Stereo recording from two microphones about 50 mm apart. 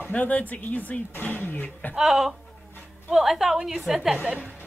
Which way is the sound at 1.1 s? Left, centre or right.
Left.